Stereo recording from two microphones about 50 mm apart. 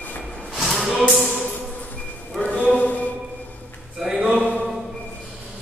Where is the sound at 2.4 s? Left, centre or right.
Left.